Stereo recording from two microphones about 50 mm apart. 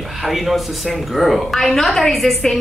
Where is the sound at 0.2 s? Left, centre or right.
Centre.